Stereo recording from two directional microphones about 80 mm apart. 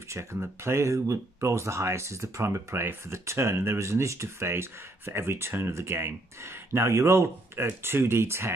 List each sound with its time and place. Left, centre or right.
0.1 s speech: right